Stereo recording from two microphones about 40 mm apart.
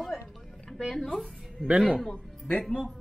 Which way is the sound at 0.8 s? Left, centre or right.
Centre.